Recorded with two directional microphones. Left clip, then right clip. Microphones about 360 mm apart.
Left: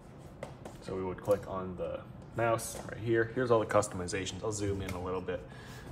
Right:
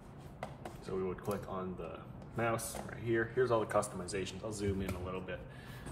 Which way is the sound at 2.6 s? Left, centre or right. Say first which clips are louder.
Left 3 dB; left.